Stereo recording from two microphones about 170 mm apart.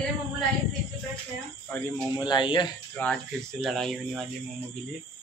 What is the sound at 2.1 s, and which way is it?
Speech, 25° left (ahead or behind).